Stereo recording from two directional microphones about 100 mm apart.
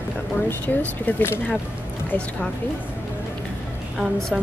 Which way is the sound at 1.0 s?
25° left (ahead or behind).